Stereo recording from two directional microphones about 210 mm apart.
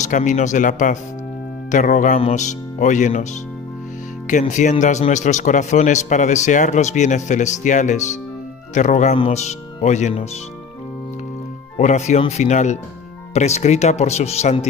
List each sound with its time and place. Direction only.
0.0 s speech: 35° left (ahead or behind)
4.3 s speech: 35° left (ahead or behind)
11.7 s speech: 35° left (ahead or behind)